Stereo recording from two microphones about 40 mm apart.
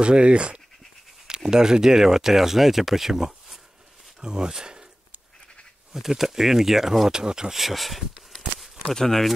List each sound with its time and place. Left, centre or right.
0.0 s speech: right
5.9 s speech: centre
7.5 s speech: centre